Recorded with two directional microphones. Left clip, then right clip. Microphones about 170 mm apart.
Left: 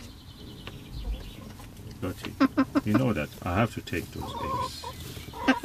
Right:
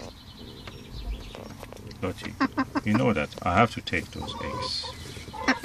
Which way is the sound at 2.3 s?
30° left (ahead or behind).